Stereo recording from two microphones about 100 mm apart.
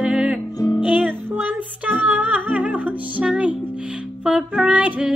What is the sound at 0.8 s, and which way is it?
Music, 15° right (ahead or behind).